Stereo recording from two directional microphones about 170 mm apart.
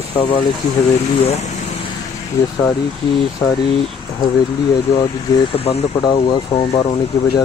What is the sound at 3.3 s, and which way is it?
Speech, 20° left (ahead or behind).